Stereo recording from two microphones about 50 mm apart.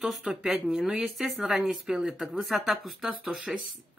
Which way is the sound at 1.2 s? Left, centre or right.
Centre.